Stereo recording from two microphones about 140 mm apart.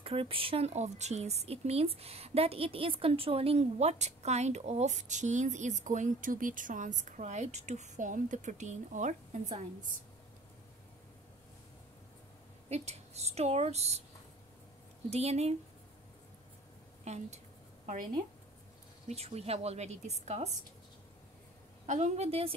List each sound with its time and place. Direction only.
0.0 s a woman's voice: 40° right (ahead or behind); by 9.4 s 60° right (ahead or behind)
12.6 s a woman's voice: 50° right (ahead or behind)
15.0 s a woman's voice: 50° right (ahead or behind)
17.0 s a woman's voice: 55° right (ahead or behind)
19.0 s a woman's voice: 50° right (ahead or behind)
21.8 s a woman's voice: 55° right (ahead or behind)